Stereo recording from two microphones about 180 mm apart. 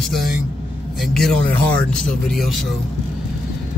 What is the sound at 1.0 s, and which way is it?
Speech, 5° left (ahead or behind).